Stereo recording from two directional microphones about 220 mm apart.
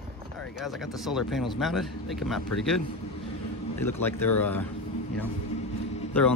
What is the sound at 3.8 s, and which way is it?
Speech, 10° left (ahead or behind).